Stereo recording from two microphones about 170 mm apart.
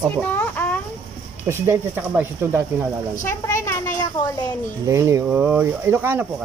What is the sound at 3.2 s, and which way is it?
Speech, 15° left (ahead or behind).